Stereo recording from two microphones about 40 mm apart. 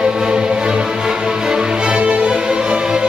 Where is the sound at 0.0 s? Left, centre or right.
Centre.